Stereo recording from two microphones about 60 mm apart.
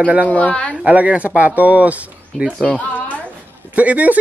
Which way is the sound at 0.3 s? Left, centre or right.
Left.